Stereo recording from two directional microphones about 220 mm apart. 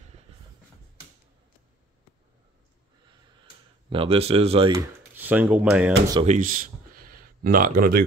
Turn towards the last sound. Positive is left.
turn(degrees=-40)  # may be behind; listen again after turning